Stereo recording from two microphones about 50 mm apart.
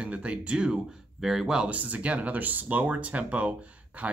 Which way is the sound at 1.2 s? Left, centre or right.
Centre.